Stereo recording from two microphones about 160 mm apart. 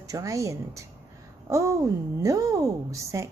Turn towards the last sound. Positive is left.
turn(degrees=-20)  # may be behind; listen again after turning